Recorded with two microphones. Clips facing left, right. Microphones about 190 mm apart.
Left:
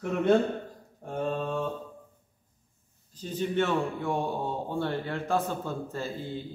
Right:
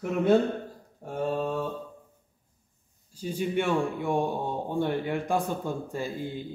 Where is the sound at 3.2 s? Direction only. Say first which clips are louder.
Even; 10° right (ahead or behind).